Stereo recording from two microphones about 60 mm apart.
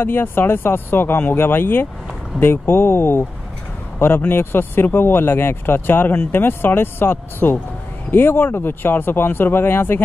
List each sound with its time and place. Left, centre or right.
0.0 s speech: left